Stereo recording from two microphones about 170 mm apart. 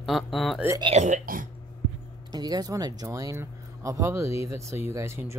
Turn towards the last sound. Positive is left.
turn(degrees=-15)  # may be behind; listen again after turning